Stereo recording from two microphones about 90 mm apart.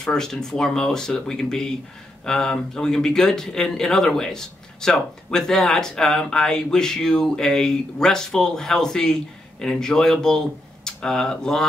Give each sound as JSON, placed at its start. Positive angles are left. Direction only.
{"t": 0.0, "sound": "speech", "side_deg": 5}